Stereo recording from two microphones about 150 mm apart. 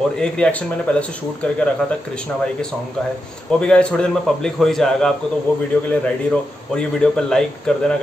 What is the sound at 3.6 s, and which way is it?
Speech, 5° left (ahead or behind).